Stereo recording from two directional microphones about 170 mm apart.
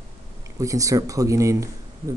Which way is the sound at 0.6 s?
20° right (ahead or behind).